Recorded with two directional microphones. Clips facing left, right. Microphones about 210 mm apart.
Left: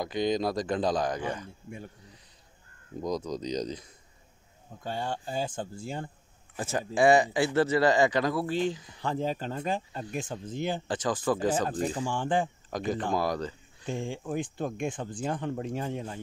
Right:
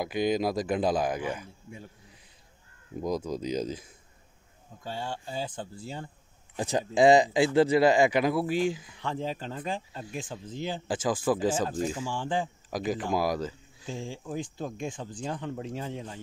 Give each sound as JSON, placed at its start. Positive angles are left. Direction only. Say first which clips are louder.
{"t": 0.0, "sound": "speech", "louder": "right 1 dB", "side_deg": -10}
{"t": 3.0, "sound": "speech", "louder": "right 1 dB", "side_deg": -5}
{"t": 4.8, "sound": "speech", "louder": "left 2 dB", "side_deg": 50}
{"t": 6.5, "sound": "speech", "louder": "right 3 dB", "side_deg": -15}
{"t": 9.0, "sound": "speech", "louder": "left 3 dB", "side_deg": 45}
{"t": 10.9, "sound": "speech", "louder": "right 4 dB", "side_deg": -10}
{"t": 12.0, "sound": "speech", "louder": "left 2 dB", "side_deg": 55}
{"t": 12.6, "sound": "speech", "louder": "even", "side_deg": -5}
{"t": 13.8, "sound": "speech", "louder": "left 3 dB", "side_deg": 60}